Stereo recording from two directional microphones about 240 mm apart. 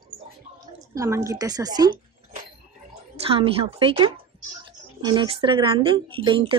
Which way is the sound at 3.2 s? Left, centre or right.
Right.